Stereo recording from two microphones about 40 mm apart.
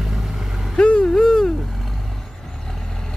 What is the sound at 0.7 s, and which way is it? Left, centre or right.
Vehicle, left.